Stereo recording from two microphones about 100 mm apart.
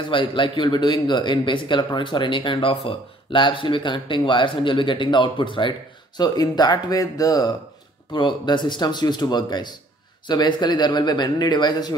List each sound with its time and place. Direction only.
0.0 s a man's voice: 55° left (ahead or behind); by 7.5 s 40° left (ahead or behind)
8.1 s a man's voice: 50° left (ahead or behind)